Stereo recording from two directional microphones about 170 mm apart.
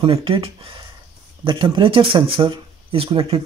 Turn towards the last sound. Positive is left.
turn(degrees=-35)  # may be behind; listen again after turning